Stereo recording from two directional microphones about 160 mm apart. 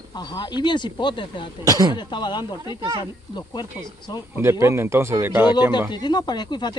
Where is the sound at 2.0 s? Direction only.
30° left (ahead or behind).